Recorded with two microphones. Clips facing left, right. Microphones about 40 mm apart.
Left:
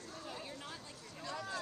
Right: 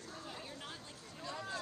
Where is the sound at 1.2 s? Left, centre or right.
Right.